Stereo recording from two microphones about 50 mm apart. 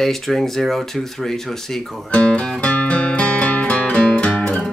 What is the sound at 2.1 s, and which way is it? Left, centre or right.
Speech, left.